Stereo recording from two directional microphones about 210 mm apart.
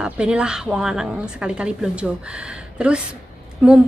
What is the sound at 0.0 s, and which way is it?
A woman's voice, 5° right (ahead or behind).